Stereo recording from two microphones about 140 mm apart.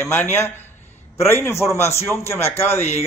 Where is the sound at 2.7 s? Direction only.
50° left (ahead or behind).